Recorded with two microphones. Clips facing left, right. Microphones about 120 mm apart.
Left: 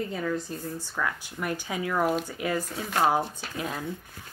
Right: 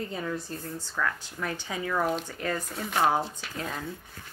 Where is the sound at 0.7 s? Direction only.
10° left (ahead or behind).